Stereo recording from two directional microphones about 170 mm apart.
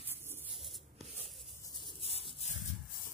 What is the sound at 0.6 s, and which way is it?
Rub, centre (ahead or behind).